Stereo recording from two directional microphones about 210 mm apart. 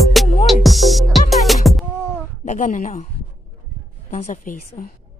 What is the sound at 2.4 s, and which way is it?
Speech, 40° left (ahead or behind).